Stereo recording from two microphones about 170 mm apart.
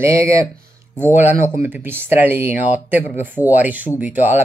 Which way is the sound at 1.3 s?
50° left (ahead or behind).